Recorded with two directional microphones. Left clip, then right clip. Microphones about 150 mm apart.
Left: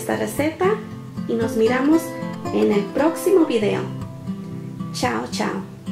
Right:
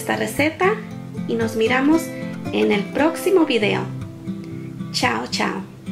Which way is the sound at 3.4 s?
30° right (ahead or behind).